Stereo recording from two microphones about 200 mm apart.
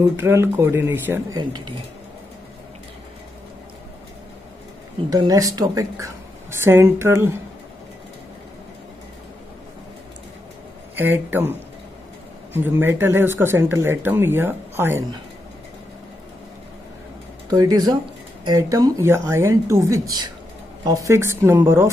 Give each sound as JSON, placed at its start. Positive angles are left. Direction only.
{"t": 0.1, "sound": "speech", "side_deg": -15}
{"t": 5.1, "sound": "speech", "side_deg": -20}
{"t": 11.0, "sound": "speech", "side_deg": -10}
{"t": 12.5, "sound": "speech", "side_deg": -10}
{"t": 17.5, "sound": "speech", "side_deg": -20}